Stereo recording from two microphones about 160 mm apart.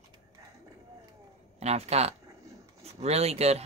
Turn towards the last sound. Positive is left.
turn(degrees=-40)  # may be behind; listen again after turning